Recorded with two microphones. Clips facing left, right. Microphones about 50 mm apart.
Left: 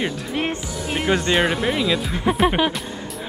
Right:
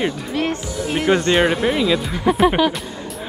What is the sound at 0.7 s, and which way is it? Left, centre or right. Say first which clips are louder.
Speech: right 4 dB; centre.